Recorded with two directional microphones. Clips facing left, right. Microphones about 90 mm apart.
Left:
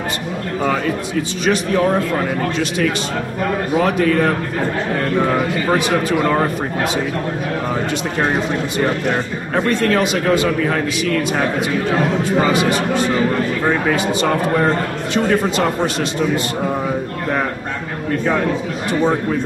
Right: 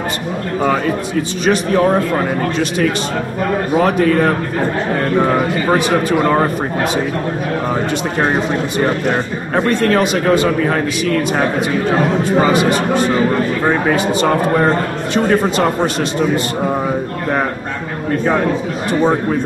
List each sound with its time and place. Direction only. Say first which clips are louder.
0.6 s a man's voice: right 3 dB; 40° right (ahead or behind)
3.7 s a man's voice: right 3 dB; 40° right (ahead or behind)
18.2 s a man's voice: right 3 dB; 35° right (ahead or behind)